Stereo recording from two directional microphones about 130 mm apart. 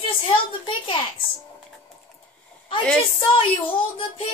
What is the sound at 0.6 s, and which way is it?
Speech, 40° left (ahead or behind).